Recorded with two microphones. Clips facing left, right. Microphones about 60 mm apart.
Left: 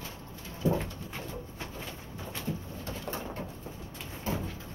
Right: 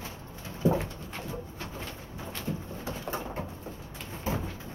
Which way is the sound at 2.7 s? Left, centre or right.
Centre.